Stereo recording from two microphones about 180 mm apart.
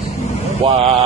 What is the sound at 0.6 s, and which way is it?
Speech, 35° right (ahead or behind).